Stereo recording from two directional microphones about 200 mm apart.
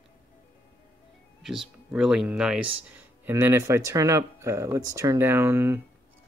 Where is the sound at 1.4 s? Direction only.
Centre (ahead or behind).